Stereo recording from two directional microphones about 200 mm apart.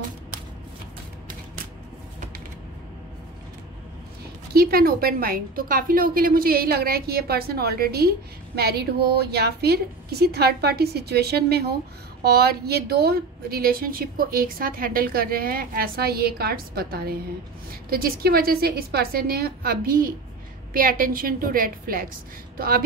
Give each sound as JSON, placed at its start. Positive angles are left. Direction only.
{"t": 4.6, "sound": "a woman's voice", "side_deg": -50}